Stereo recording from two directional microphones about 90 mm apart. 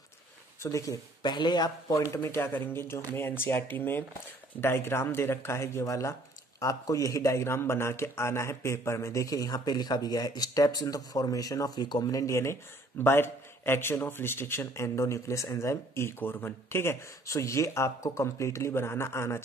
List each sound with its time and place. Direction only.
0.6 s speech: 35° left (ahead or behind)
1.2 s speech: 55° left (ahead or behind)
1.9 s a man's voice: 35° left (ahead or behind)